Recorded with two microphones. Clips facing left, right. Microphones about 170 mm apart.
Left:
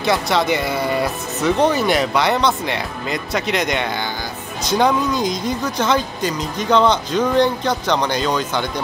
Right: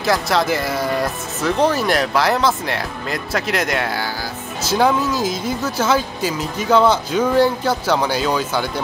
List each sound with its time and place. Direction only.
0.0 s speech: centre (ahead or behind)